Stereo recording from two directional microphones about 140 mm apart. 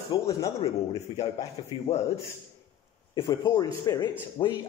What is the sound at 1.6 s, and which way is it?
Speech, 40° left (ahead or behind).